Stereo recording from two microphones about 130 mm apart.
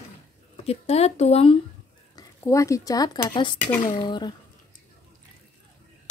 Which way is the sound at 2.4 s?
25° left (ahead or behind).